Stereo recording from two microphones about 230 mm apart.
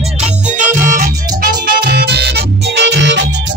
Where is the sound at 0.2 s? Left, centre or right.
Right.